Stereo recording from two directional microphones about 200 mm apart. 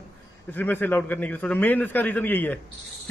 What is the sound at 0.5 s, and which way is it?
A man's voice, 10° left (ahead or behind).